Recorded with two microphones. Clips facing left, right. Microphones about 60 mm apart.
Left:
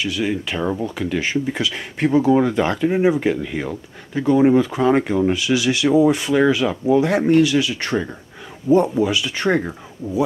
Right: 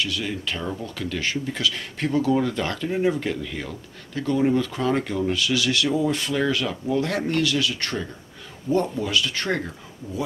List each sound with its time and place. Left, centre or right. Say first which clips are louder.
0.0 s speech: left 5 dB; centre